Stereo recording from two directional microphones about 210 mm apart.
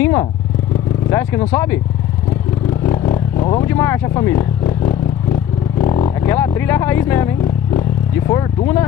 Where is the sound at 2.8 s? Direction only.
25° left (ahead or behind).